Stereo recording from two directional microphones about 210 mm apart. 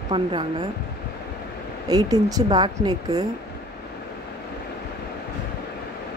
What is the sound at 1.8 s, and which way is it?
Speech, 15° right (ahead or behind).